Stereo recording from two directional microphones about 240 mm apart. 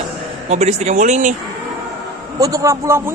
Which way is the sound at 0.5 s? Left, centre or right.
Right.